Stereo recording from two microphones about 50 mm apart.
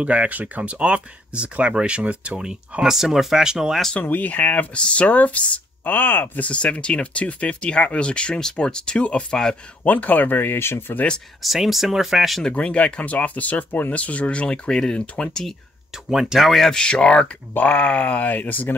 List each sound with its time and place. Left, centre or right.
0.0 s speech: right
2.8 s speech: centre
4.0 s speech: left
4.7 s speech: left
6.4 s speech: left
9.8 s speech: left
11.4 s speech: centre
12.5 s speech: left
15.9 s speech: centre
16.6 s speech: centre
17.6 s speech: left